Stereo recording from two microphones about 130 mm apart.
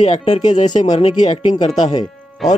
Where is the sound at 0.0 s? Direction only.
55° left (ahead or behind).